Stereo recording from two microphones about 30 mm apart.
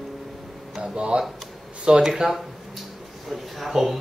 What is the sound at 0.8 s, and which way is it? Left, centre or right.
Speech, right.